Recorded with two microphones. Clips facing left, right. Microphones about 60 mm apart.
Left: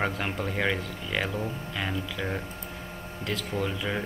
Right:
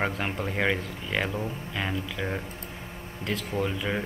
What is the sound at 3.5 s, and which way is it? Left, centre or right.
Speech, centre.